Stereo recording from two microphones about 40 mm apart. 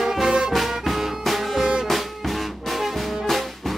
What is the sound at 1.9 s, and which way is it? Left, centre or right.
Music, centre.